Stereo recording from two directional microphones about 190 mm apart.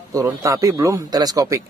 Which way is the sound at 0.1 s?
15° right (ahead or behind).